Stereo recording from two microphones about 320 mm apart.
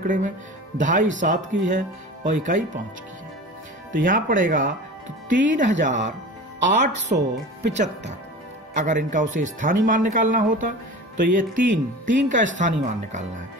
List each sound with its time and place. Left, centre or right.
0.0 s speech: right
3.9 s speech: right
5.3 s speech: right